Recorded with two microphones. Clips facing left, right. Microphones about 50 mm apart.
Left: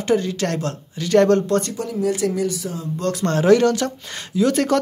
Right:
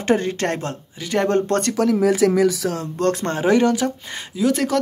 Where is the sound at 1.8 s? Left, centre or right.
Right.